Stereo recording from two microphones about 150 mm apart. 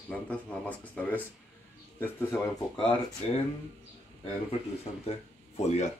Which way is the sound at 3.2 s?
45° left (ahead or behind).